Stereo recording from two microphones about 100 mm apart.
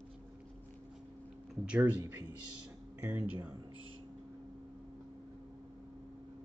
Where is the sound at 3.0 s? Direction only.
20° right (ahead or behind).